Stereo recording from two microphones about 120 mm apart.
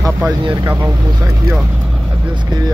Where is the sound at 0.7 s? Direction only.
20° right (ahead or behind).